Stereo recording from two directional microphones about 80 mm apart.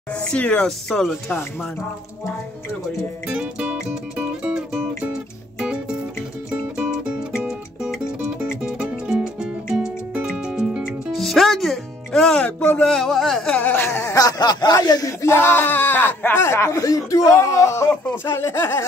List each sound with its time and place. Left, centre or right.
0.1 s speech: centre
3.3 s music: centre
11.1 s music: centre
12.8 s speech: centre
13.6 s a sound: left
14.1 s speech: left
15.2 s speech: left